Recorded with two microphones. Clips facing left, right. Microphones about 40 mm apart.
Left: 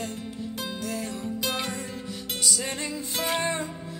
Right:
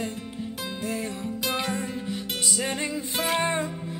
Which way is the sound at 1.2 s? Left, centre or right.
Centre.